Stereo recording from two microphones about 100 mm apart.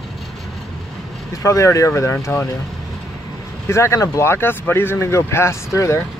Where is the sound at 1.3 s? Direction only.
30° left (ahead or behind).